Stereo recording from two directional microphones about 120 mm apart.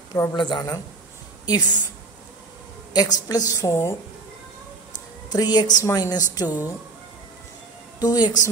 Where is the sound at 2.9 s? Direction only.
35° left (ahead or behind).